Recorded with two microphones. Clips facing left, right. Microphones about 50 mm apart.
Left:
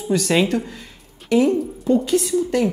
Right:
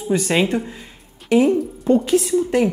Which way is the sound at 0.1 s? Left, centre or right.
Centre.